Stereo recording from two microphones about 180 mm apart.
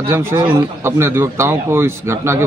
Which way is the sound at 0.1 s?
15° right (ahead or behind).